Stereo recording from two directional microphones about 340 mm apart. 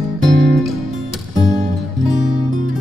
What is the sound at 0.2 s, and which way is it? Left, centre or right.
Music, centre.